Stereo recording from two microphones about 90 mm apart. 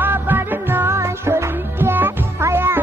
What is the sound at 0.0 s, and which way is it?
Music, 20° right (ahead or behind).